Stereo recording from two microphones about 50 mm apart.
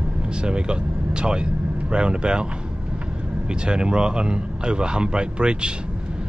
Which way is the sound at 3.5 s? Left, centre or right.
Centre.